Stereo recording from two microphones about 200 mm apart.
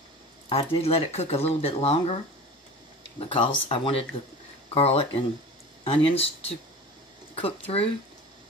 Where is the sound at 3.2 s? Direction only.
25° left (ahead or behind).